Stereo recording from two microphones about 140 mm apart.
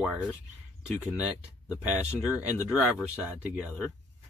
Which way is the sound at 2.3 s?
20° left (ahead or behind).